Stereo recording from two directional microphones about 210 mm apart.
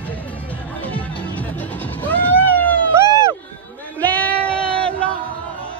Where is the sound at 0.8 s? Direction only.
5° left (ahead or behind).